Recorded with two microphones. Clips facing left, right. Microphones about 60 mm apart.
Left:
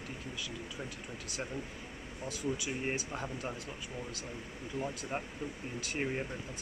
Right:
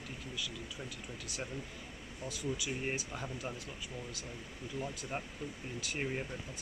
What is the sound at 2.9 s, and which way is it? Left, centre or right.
Speech, centre.